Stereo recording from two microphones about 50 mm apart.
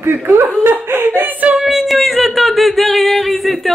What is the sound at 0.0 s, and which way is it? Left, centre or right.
Laughter, right.